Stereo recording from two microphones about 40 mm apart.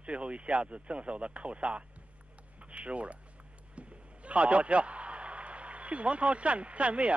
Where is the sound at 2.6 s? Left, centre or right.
Right.